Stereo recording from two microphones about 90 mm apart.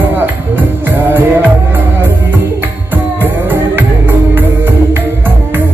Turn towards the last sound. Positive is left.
turn(degrees=-20)  # may be behind; listen again after turning